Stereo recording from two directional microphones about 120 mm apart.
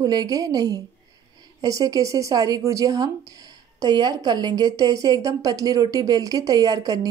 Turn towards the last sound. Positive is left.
turn(degrees=-35)  # may be behind; listen again after turning